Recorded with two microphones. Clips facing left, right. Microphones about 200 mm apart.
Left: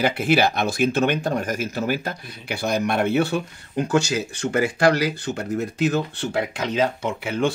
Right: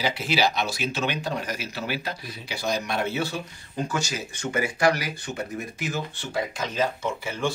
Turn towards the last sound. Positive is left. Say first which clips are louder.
# left 5 dB
turn(degrees=65)  # may be behind; listen again after turning